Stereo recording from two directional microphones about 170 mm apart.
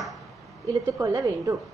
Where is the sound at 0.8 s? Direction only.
20° right (ahead or behind).